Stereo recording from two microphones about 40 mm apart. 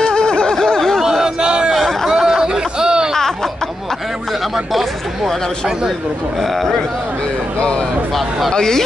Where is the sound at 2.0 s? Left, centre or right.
Centre.